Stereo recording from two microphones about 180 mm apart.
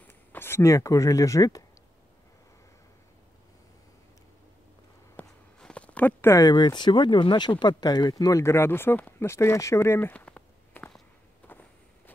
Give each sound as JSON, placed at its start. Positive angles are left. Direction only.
{"t": 0.0, "sound": "speech", "side_deg": 10}
{"t": 5.1, "sound": "speech", "side_deg": 5}